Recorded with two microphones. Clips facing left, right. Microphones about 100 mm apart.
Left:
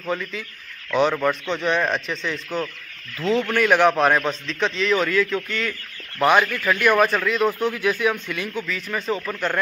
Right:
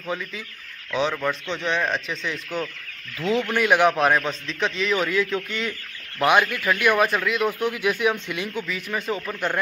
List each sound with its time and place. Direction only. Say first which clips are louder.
0.1 s a man's voice: left 3 dB; 5° right (ahead or behind)
6.1 s a man's voice: left 2 dB; 5° right (ahead or behind)